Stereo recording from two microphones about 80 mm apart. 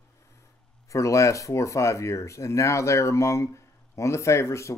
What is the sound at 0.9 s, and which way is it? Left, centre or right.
Speech, left.